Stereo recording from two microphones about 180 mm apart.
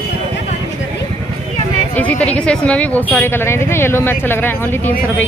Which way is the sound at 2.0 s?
10° left (ahead or behind).